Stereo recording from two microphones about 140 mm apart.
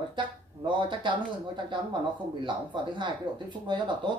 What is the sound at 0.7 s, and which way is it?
Speech, 35° right (ahead or behind).